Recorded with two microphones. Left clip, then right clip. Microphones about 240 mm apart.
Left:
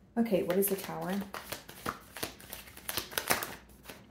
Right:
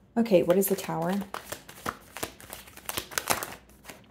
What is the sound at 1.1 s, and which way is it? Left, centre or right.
Shuffling cards, right.